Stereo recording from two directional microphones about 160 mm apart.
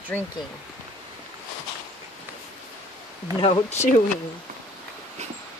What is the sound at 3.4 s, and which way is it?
Speech, 35° left (ahead or behind).